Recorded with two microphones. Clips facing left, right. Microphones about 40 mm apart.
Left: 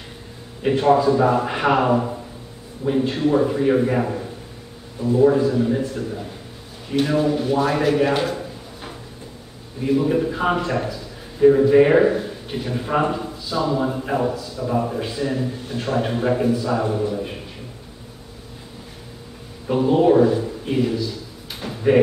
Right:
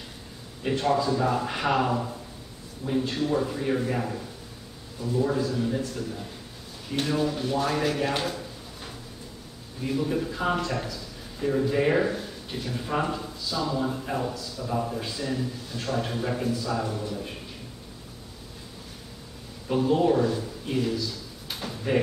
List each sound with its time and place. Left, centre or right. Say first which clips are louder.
0.7 s a man's voice: left 8 dB; left
19.7 s a man's voice: left 7 dB; left
20.8 s drawer open or close: left 6 dB; centre